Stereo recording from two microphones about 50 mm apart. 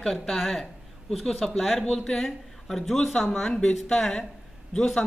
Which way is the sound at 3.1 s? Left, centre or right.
Centre.